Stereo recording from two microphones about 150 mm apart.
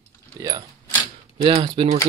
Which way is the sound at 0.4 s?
25° right (ahead or behind).